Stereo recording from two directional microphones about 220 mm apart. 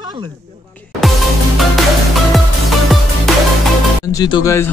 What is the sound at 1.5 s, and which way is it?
Music, centre (ahead or behind).